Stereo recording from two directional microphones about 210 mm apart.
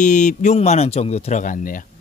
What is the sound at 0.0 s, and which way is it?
Speech, 35° left (ahead or behind).